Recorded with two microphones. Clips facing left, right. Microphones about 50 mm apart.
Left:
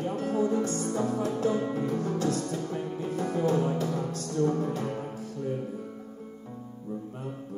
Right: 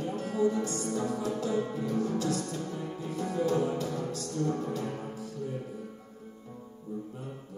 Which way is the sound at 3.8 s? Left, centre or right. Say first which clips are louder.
Left 3 dB; left.